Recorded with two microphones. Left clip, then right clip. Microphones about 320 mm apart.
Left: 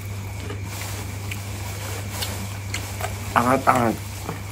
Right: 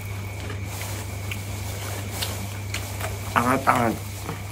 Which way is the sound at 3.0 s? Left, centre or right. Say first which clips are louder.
Left 2 dB; centre.